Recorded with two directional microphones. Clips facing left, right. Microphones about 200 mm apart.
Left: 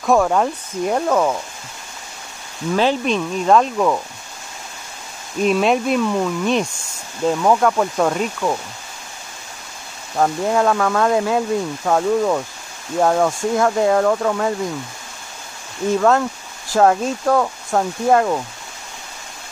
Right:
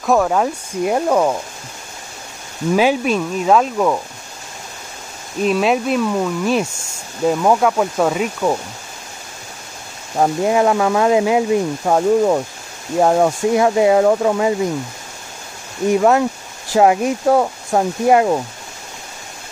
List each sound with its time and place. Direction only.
0.0 s speech: centre (ahead or behind)
2.7 s speech: 10° right (ahead or behind)
5.4 s speech: centre (ahead or behind)
10.1 s speech: 15° right (ahead or behind)
15.9 s speech: 15° right (ahead or behind)